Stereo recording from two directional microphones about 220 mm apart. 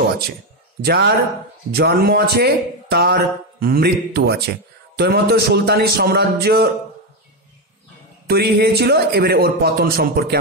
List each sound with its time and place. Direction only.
0.8 s a man's voice: 45° right (ahead or behind)
8.3 s a man's voice: 45° right (ahead or behind)